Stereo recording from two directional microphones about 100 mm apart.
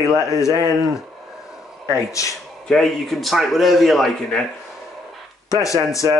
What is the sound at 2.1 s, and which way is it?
Speech, 35° left (ahead or behind).